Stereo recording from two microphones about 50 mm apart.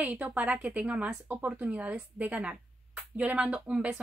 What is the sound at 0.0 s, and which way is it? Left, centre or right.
A woman's voice, right.